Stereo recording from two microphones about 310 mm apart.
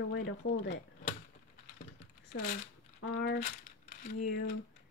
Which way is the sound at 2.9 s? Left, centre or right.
Left.